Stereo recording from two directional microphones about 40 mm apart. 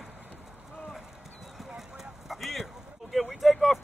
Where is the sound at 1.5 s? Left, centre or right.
Centre.